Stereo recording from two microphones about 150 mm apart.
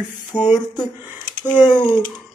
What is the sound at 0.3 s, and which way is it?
Speech, 5° left (ahead or behind).